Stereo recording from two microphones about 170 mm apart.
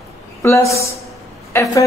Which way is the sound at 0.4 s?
15° left (ahead or behind).